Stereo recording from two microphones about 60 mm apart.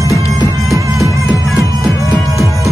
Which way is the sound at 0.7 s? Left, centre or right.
Right.